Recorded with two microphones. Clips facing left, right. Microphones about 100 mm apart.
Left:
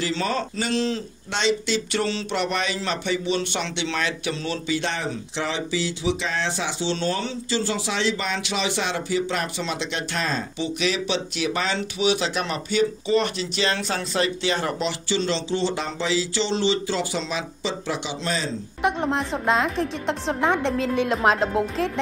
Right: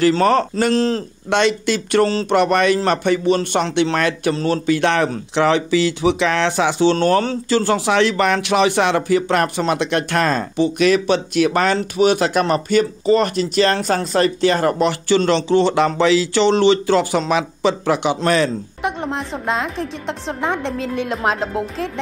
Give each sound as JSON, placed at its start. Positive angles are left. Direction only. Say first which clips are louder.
{"t": 0.0, "sound": "a man's voice", "louder": "right 11 dB", "side_deg": -55}
{"t": 1.3, "sound": "speech", "louder": "right 6 dB", "side_deg": -55}
{"t": 18.8, "sound": "a woman's voice", "louder": "left 1 dB", "side_deg": 0}